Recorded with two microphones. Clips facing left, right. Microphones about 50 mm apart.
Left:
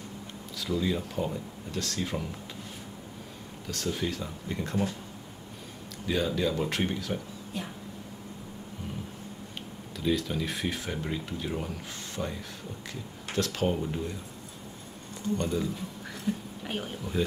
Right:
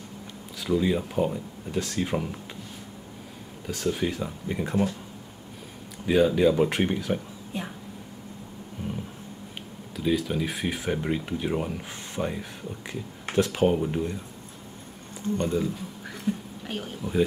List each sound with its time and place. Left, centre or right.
0.6 s speech: centre
3.6 s speech: centre
6.0 s speech: centre
9.9 s speech: centre
15.3 s speech: centre
16.3 s a sound: centre
17.0 s speech: centre